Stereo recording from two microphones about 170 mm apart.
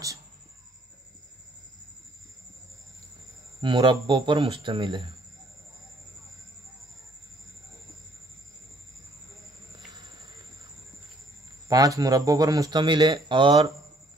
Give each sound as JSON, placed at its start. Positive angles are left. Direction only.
{"t": 3.6, "sound": "speech", "side_deg": -25}
{"t": 11.7, "sound": "speech", "side_deg": -20}